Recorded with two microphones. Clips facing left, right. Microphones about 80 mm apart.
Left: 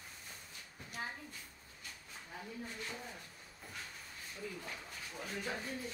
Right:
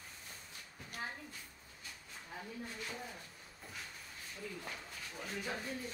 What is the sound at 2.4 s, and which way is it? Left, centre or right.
Speech, centre.